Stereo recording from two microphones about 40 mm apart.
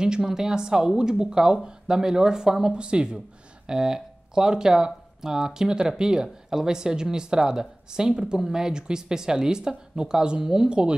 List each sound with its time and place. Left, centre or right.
0.2 s a woman's voice: centre